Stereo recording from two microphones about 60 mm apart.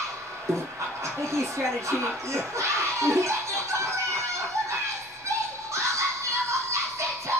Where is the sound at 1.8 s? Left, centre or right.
Right.